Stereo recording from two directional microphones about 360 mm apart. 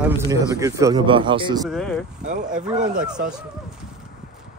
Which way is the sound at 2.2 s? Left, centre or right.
Right.